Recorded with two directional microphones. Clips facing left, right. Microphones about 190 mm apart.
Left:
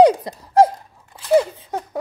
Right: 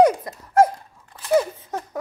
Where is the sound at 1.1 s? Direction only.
25° left (ahead or behind).